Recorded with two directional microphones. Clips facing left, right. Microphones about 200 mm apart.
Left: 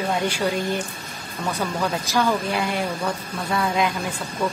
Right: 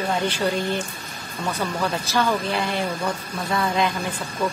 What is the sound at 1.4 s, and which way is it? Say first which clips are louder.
Speech: even; centre (ahead or behind).